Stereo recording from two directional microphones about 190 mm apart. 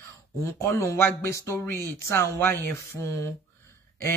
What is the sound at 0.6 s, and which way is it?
Speech, 15° left (ahead or behind).